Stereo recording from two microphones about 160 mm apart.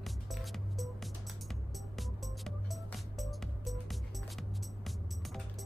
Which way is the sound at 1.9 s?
Centre (ahead or behind).